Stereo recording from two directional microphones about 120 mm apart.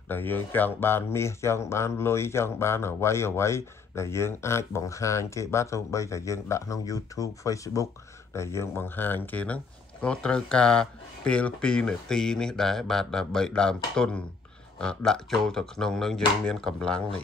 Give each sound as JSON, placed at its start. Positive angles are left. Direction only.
{"t": 0.1, "sound": "a man's voice", "side_deg": 15}